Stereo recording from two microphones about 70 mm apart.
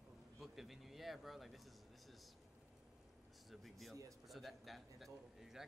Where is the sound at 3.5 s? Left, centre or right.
Centre.